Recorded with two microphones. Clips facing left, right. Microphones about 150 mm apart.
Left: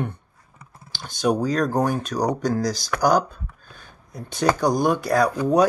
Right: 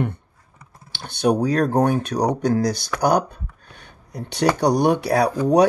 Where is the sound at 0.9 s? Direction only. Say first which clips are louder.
Right 2 dB; 65° right (ahead or behind).